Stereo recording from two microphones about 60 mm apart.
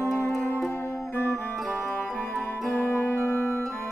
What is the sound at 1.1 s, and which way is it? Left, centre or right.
Music, left.